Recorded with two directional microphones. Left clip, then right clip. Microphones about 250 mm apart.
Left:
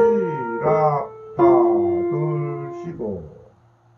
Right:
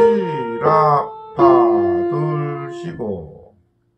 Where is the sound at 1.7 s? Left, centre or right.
Centre.